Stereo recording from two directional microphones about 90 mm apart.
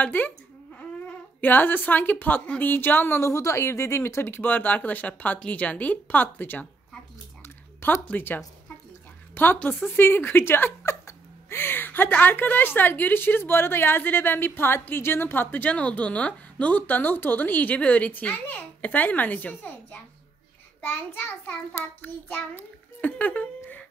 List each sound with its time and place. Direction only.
0.0 s speech: 20° left (ahead or behind)
7.4 s a sound: 25° left (ahead or behind)
8.0 s a woman's voice: 20° left (ahead or behind)
20.8 s child singing: 20° left (ahead or behind)